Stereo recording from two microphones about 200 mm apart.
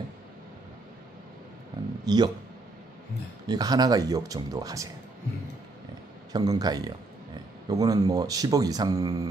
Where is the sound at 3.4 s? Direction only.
20° right (ahead or behind).